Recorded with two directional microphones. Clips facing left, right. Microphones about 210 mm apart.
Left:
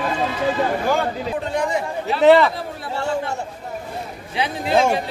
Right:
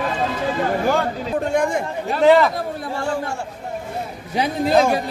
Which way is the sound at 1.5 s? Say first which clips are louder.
Right 1 dB; 50° right (ahead or behind).